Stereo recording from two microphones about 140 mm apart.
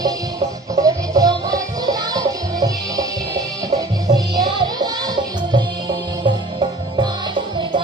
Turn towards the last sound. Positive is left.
turn(degrees=-35)  # may be behind; listen again after turning